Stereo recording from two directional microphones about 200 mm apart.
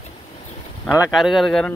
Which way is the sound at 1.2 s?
Centre (ahead or behind).